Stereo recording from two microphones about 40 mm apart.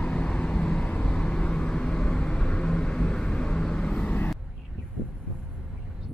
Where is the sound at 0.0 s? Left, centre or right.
Left.